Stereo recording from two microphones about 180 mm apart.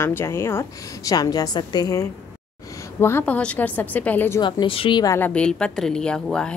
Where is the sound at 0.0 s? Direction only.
15° left (ahead or behind).